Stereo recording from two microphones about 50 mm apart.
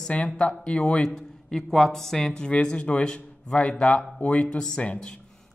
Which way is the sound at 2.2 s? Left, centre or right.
Centre.